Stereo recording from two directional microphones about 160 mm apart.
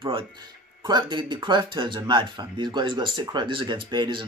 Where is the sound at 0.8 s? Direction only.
30° right (ahead or behind).